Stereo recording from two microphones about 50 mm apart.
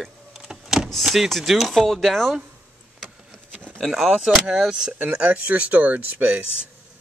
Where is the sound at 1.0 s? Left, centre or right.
Centre.